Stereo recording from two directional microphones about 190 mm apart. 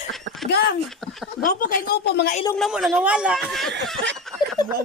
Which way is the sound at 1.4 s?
45° left (ahead or behind).